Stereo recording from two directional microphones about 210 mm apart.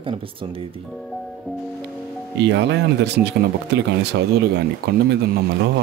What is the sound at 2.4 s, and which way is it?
Speech, 55° right (ahead or behind).